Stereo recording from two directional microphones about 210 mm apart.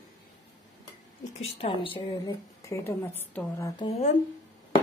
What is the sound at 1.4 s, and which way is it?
Speech, 25° left (ahead or behind).